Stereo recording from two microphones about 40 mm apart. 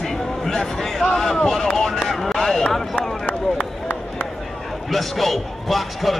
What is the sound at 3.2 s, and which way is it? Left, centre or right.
Run, left.